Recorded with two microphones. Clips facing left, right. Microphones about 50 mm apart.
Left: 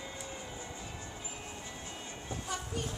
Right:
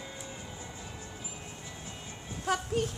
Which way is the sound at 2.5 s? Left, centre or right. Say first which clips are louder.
Right 10 dB; right.